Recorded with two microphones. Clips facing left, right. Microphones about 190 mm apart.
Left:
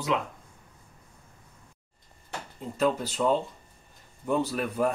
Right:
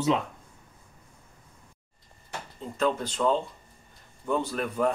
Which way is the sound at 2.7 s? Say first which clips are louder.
Left 1 dB; 5° left (ahead or behind).